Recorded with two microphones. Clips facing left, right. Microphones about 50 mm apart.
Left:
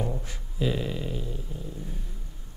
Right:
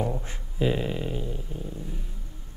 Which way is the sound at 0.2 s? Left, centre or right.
Right.